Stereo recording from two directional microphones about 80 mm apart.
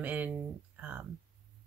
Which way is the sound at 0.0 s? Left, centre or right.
Centre.